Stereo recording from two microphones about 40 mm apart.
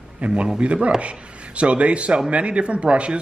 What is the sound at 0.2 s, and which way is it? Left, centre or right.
A man's voice, right.